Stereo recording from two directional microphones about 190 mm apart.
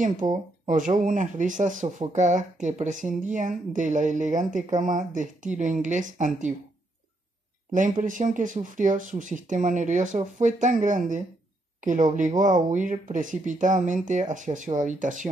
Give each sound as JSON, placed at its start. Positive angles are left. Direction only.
{"t": 0.2, "sound": "speech", "side_deg": -20}
{"t": 0.7, "sound": "speech", "side_deg": -40}
{"t": 8.0, "sound": "speech", "side_deg": -45}